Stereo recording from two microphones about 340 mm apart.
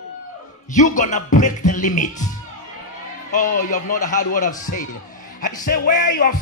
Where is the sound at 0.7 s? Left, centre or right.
Left.